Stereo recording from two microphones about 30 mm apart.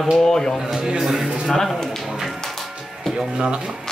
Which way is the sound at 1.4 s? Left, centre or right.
Centre.